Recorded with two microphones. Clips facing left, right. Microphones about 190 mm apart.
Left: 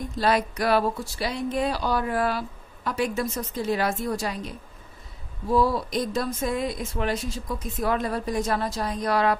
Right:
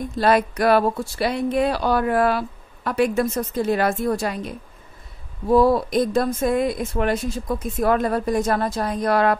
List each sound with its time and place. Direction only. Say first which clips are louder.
0.2 s speech: right 5 dB; 55° right (ahead or behind)